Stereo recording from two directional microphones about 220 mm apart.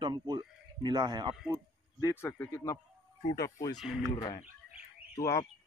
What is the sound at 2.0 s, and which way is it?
Speech, 10° left (ahead or behind).